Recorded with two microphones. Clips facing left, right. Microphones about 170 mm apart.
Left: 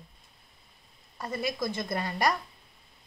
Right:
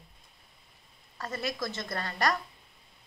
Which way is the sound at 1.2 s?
15° left (ahead or behind).